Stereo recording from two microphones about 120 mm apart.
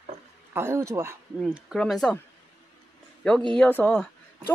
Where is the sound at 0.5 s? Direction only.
20° right (ahead or behind).